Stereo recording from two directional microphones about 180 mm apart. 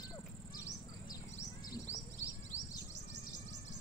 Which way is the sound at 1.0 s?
20° left (ahead or behind).